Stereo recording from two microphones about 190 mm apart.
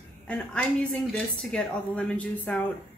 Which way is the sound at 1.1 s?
5° left (ahead or behind).